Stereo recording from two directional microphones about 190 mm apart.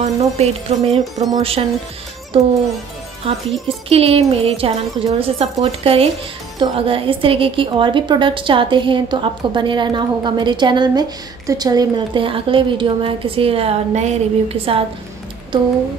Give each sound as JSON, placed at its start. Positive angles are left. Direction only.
{"t": 0.0, "sound": "a woman's voice", "side_deg": -35}
{"t": 3.6, "sound": "a woman's voice", "side_deg": -30}